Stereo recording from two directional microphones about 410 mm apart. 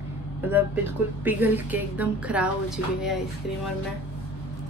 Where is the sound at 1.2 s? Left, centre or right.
Centre.